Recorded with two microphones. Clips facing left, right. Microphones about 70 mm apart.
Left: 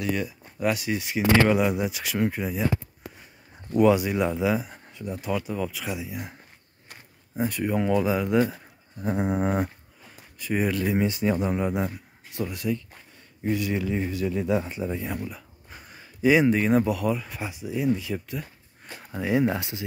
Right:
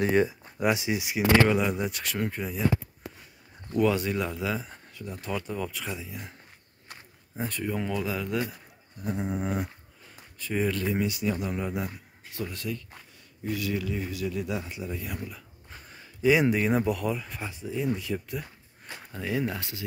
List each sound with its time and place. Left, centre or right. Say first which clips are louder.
0.0 s speech: right 5 dB; right
0.6 s speech: even; centre
1.5 s speech: left 3 dB; centre
3.7 s speech: left 5 dB; centre
5.3 s speech: left 3 dB; centre
7.3 s speech: left 6 dB; centre
9.0 s a sound: left 6 dB; left
10.4 s speech: left 3 dB; centre
11.0 s speech: left 4 dB; left
15.3 s speech: left 2 dB; centre
17.9 s speech: left 2 dB; centre
19.1 s speech: left 6 dB; centre